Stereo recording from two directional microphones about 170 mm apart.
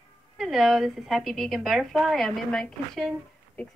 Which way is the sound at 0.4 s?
Centre (ahead or behind).